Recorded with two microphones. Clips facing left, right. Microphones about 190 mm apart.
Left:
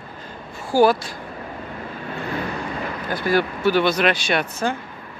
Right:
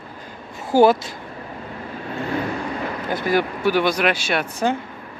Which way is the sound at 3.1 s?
20° right (ahead or behind).